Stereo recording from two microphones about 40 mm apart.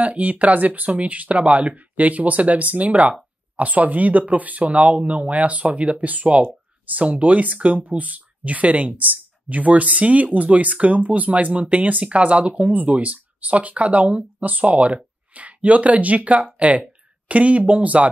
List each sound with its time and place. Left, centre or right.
0.0 s speech: right
12.6 s speech: right